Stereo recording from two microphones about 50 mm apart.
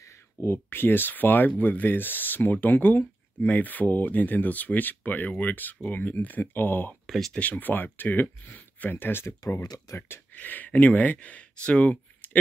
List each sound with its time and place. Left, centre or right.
0.0 s speech: left
7.1 s speech: centre
7.3 s speech: left
9.0 s speech: left
10.3 s speech: left